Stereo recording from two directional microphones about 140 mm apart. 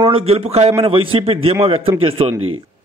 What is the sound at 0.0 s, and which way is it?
A man's voice, 40° right (ahead or behind).